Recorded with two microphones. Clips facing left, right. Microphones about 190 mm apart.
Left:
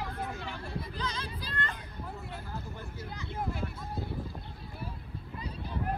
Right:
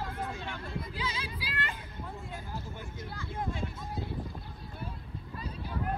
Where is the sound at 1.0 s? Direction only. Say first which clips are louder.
Even; 5° right (ahead or behind).